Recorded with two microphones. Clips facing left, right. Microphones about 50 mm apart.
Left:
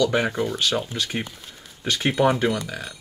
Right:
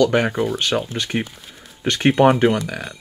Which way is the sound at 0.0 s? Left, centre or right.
Right.